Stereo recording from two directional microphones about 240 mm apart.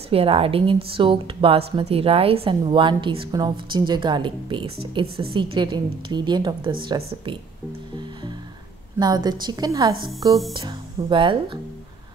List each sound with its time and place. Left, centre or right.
0.1 s a woman's voice: right
9.0 s a woman's voice: centre